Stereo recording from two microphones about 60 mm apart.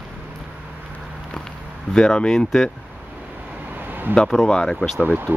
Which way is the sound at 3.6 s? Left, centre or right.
Right.